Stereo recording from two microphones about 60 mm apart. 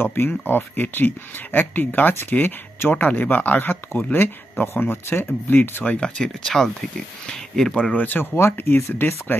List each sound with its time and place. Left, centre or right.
0.0 s speech: left
5.9 s speech: centre
7.9 s speech: left
8.4 s speech: left